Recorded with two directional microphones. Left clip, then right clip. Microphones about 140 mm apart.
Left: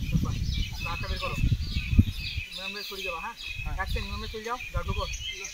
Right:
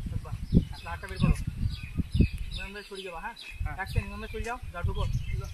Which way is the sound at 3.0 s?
50° right (ahead or behind).